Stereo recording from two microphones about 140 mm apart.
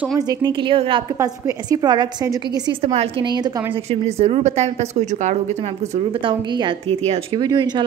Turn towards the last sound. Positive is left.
turn(degrees=-30)  # may be behind; listen again after turning